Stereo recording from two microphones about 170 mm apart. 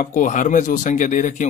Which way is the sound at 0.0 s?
50° left (ahead or behind).